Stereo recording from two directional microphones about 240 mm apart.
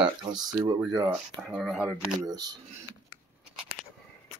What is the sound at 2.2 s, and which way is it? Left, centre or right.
Speech, centre.